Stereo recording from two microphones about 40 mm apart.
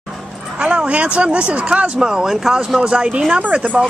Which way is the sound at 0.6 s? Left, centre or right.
Right.